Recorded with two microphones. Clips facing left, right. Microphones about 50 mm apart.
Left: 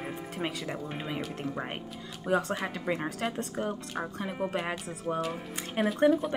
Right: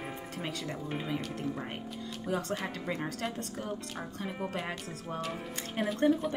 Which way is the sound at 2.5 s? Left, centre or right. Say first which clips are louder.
Left 3 dB; centre.